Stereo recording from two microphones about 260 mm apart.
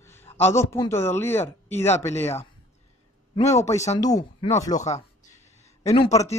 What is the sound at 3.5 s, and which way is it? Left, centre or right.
Speech, centre.